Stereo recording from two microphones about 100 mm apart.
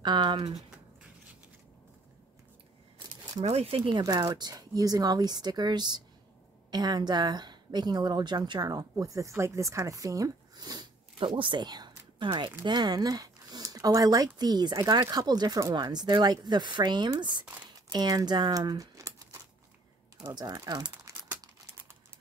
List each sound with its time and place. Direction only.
0.0 s a woman's voice: 45° right (ahead or behind)
3.4 s speech: 70° right (ahead or behind)
4.0 s a woman's voice: 40° right (ahead or behind)
11.1 s a woman's voice: 60° right (ahead or behind); by 19.4 s 35° right (ahead or behind)
20.2 s a woman's voice: 45° right (ahead or behind)